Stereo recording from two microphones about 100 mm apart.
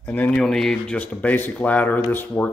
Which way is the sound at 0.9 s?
15° left (ahead or behind).